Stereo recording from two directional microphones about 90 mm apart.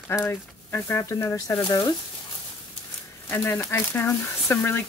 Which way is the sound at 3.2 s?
25° left (ahead or behind).